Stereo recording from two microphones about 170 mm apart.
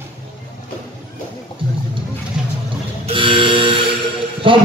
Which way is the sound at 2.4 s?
5° right (ahead or behind).